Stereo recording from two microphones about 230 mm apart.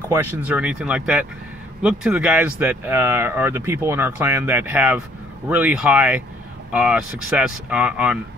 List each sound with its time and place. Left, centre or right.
0.1 s speech: centre